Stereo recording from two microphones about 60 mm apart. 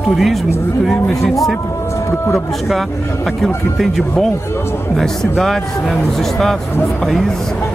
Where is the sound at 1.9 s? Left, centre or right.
Left.